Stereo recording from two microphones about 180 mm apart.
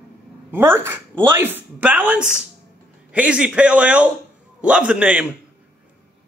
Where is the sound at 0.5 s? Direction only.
10° right (ahead or behind).